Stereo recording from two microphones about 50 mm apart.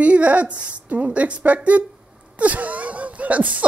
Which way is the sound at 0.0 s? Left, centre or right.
Right.